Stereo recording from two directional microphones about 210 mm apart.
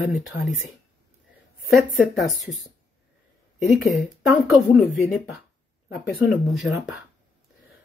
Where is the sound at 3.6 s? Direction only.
Centre (ahead or behind).